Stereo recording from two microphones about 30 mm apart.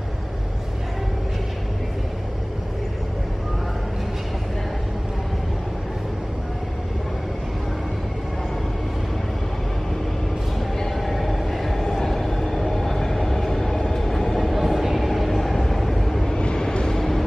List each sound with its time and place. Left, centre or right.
11.0 s train: centre
13.9 s vehicle: centre
14.5 s vehicle: centre
15.0 s train: centre
16.3 s vehicle: left